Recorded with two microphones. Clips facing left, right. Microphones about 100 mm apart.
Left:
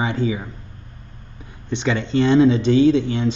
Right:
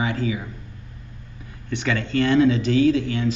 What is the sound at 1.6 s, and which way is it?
Speech, 25° left (ahead or behind).